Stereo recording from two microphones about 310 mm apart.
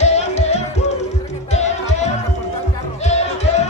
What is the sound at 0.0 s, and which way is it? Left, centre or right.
Music, left.